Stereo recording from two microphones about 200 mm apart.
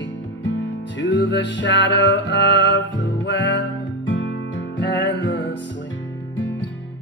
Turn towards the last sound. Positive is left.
turn(degrees=70)  # may be behind; listen again after turning